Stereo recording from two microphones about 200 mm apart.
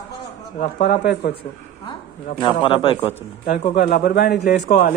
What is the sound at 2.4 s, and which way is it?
Speech, 25° left (ahead or behind).